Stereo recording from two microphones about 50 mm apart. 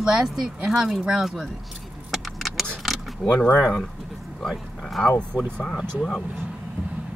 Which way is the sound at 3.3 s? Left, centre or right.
Left.